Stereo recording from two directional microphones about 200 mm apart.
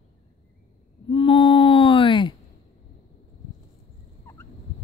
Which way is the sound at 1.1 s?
25° left (ahead or behind).